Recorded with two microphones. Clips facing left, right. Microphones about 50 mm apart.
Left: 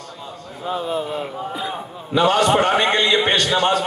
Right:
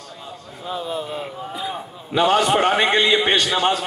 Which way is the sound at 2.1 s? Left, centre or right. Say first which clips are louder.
Left 1 dB; centre.